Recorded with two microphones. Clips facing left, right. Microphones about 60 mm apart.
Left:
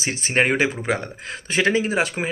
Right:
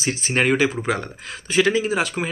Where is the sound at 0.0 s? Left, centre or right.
Left.